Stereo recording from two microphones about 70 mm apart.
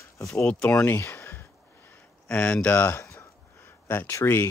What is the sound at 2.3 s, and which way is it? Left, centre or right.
Speech, centre.